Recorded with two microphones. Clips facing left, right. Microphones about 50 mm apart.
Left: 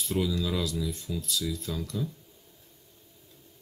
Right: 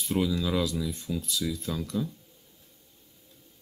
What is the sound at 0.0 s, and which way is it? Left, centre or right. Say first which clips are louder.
Speech: right 2 dB; right.